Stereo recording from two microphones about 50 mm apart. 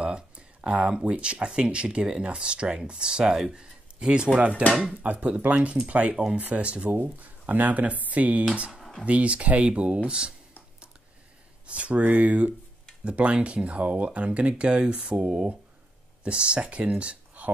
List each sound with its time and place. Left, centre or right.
0.0 s speech: right
11.6 s speech: right